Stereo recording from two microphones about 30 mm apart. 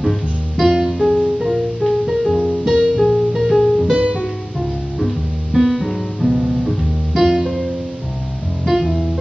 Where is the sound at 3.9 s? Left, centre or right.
Right.